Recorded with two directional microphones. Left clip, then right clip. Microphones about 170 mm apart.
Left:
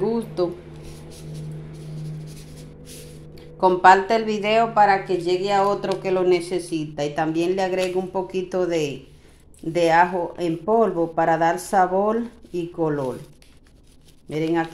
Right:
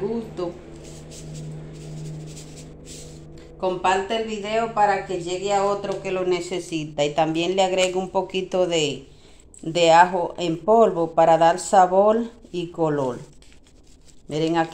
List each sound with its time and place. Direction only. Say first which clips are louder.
3.6 s speech: left 7 dB; 30° left (ahead or behind)
6.0 s speech: left 5 dB; 20° left (ahead or behind); by 13.0 s centre (ahead or behind)
14.3 s speech: right 1 dB; 5° right (ahead or behind)